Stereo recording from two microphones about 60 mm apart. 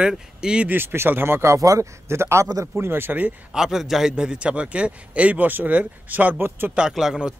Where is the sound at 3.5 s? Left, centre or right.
Centre; by 6.7 s right.